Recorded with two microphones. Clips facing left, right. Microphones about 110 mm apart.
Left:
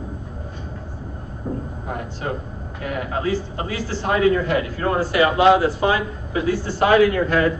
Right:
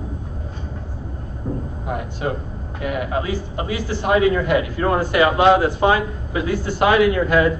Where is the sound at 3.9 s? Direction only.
20° right (ahead or behind).